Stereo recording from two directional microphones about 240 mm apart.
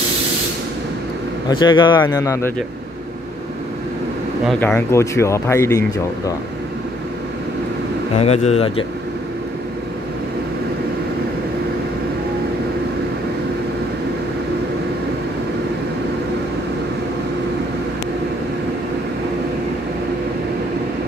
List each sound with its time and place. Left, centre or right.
1.5 s speech: centre
4.5 s speech: centre
8.2 s speech: left